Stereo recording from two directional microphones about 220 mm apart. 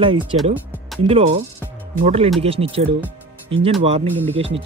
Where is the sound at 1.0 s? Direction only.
25° right (ahead or behind).